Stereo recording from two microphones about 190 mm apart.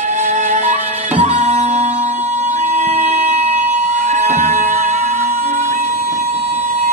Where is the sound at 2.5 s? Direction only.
40° right (ahead or behind).